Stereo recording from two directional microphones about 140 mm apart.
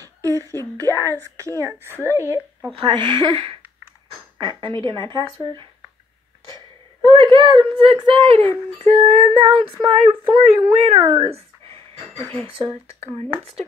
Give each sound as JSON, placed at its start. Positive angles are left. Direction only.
{"t": 0.2, "sound": "speech", "side_deg": -25}
{"t": 2.8, "sound": "speech", "side_deg": -35}
{"t": 7.3, "sound": "speech", "side_deg": -30}
{"t": 8.7, "sound": "speech", "side_deg": -50}
{"t": 11.1, "sound": "a sound", "side_deg": -40}
{"t": 12.4, "sound": "speech", "side_deg": -40}